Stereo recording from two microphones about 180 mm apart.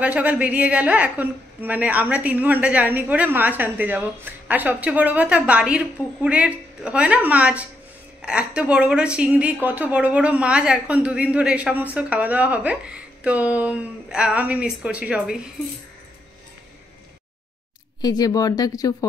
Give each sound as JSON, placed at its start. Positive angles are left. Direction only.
{"t": 0.0, "sound": "a woman's voice", "side_deg": -10}
{"t": 18.0, "sound": "speech", "side_deg": 20}